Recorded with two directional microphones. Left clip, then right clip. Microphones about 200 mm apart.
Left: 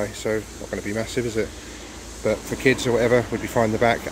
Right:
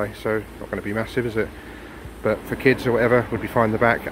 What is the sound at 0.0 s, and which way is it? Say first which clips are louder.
Speech: right 1 dB; 10° left (ahead or behind).